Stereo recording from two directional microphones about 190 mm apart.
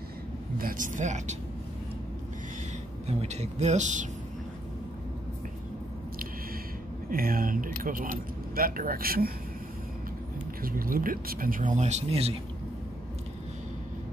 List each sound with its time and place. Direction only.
0.6 s speech: 45° right (ahead or behind)
3.1 s speech: 35° right (ahead or behind)
7.1 s speech: 50° right (ahead or behind)
10.6 s speech: 50° right (ahead or behind); by 12.4 s 35° right (ahead or behind)